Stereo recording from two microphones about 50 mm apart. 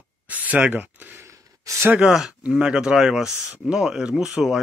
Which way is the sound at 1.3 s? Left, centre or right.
Right.